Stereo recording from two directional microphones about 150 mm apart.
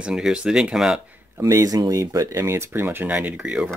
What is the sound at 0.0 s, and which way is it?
Speech, 5° right (ahead or behind).